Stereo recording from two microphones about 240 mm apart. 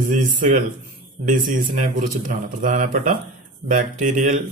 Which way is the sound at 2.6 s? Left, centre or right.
Right.